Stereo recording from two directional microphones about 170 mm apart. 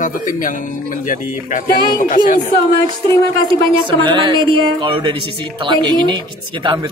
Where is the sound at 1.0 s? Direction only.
50° left (ahead or behind).